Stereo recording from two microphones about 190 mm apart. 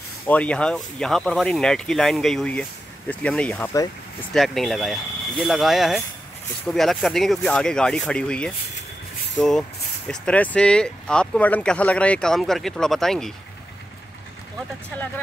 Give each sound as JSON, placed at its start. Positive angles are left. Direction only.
{"t": 0.3, "sound": "speech", "side_deg": 5}